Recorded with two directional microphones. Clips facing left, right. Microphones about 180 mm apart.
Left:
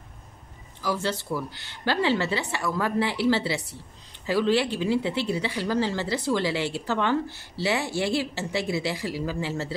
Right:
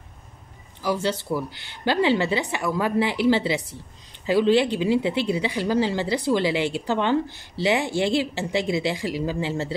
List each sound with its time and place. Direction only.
0.8 s a woman's voice: 20° right (ahead or behind)